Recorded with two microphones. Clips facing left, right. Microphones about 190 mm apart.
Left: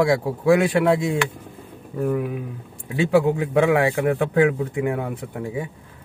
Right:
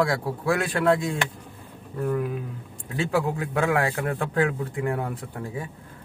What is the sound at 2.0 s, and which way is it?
A man's voice, 15° left (ahead or behind).